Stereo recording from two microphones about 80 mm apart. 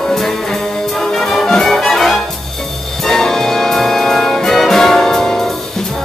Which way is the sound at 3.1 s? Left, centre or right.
Centre.